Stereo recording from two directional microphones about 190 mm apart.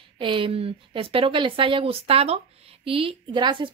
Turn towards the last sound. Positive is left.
turn(degrees=-25)  # may be behind; listen again after turning